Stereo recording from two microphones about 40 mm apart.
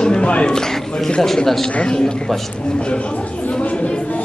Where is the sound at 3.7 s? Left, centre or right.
Left.